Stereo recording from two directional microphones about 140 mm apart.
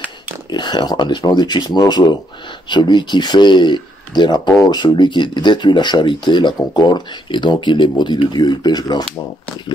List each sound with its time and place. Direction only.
0.5 s speech: 30° left (ahead or behind)